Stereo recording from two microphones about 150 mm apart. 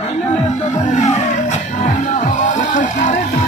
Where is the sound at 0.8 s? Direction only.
55° left (ahead or behind).